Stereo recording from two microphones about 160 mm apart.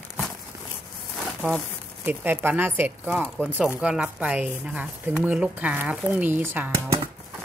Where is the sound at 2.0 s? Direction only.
15° right (ahead or behind).